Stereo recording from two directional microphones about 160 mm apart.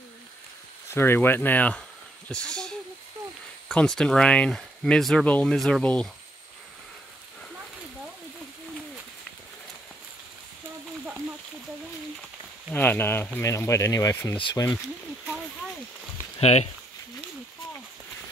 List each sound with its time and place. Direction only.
0.8 s speech: 15° left (ahead or behind)
12.7 s speech: 10° left (ahead or behind)
16.3 s speech: 40° left (ahead or behind)